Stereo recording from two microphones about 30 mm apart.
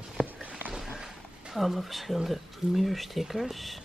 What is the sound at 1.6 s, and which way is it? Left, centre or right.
Speech, centre.